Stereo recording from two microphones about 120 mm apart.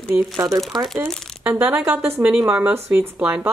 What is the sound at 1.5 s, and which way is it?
Speech, 10° right (ahead or behind).